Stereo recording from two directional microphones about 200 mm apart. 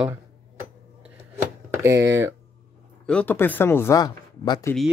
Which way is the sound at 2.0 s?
15° right (ahead or behind).